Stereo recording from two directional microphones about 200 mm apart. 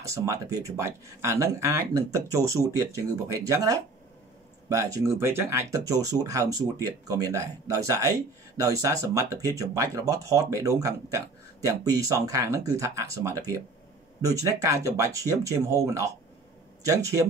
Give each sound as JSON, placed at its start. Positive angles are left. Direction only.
{"t": 0.0, "sound": "speech", "side_deg": -15}